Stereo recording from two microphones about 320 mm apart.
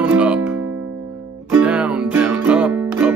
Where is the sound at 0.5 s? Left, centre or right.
Right.